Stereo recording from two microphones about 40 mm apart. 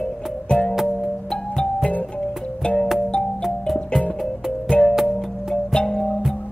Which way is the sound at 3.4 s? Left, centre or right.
Centre.